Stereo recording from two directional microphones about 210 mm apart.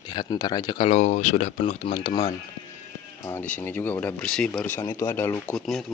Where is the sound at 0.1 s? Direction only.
20° left (ahead or behind).